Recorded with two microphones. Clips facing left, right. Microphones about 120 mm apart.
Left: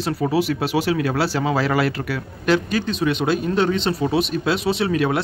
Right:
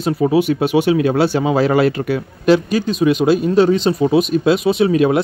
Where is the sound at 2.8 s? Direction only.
10° right (ahead or behind).